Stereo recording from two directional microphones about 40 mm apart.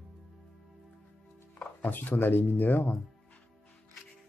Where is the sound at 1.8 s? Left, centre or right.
Left.